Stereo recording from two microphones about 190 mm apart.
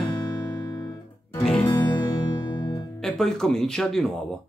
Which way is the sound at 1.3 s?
10° left (ahead or behind).